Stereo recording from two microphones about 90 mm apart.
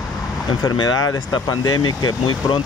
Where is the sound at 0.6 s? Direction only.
50° left (ahead or behind).